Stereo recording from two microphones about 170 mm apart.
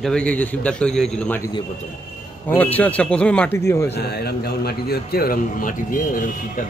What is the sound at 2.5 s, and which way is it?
Speech, 10° left (ahead or behind).